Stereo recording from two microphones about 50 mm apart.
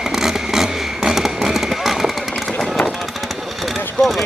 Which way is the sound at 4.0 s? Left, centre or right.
Centre.